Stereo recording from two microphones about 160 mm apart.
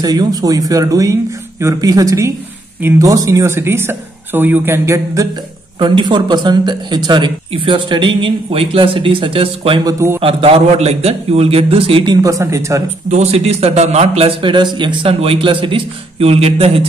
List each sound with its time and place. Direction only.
0.0 s speech: 25° right (ahead or behind)
5.8 s speech: 30° right (ahead or behind)
9.8 s speech: 15° right (ahead or behind)
10.2 s speech: 35° right (ahead or behind); by 12.8 s 20° right (ahead or behind)
13.1 s speech: 40° right (ahead or behind)